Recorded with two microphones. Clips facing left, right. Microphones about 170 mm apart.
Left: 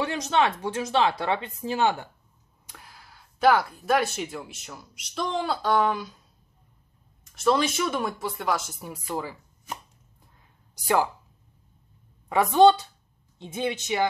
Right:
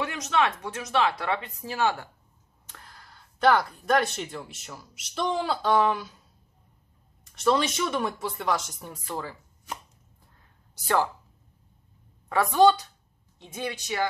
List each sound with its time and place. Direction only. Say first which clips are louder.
0.0 s speech: left 2 dB; 30° left (ahead or behind)
2.6 s speech: left 1 dB; 10° left (ahead or behind)
7.3 s speech: left 1 dB; centre (ahead or behind)
12.3 s speech: left 2 dB; 20° left (ahead or behind)